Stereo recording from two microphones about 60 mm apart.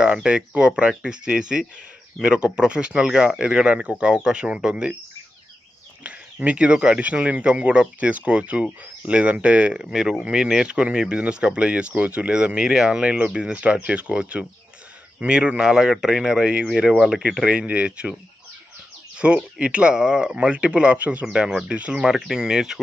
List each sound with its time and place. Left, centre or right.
0.0 s speech: centre
6.0 s speech: right; by 17.5 s centre
17.5 s speech: right
19.1 s speech: centre
22.0 s speech: centre